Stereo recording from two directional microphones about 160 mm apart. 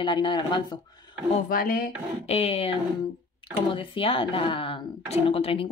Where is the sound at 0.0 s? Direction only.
30° left (ahead or behind).